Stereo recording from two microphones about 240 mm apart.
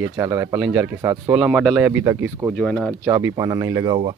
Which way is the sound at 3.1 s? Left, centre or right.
Centre.